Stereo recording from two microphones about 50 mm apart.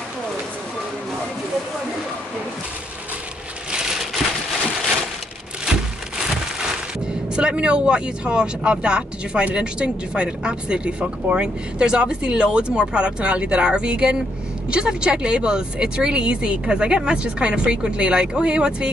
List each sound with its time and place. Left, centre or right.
3.7 s crumpling: centre
7.3 s speech: centre